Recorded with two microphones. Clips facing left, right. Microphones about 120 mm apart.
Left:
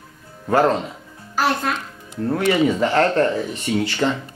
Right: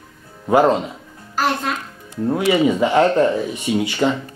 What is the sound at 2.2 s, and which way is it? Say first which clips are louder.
Speech: right 2 dB; 10° right (ahead or behind).